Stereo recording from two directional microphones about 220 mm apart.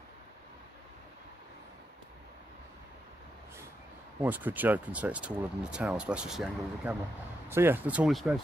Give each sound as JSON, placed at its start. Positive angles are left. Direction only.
{"t": 4.2, "sound": "speech", "side_deg": -10}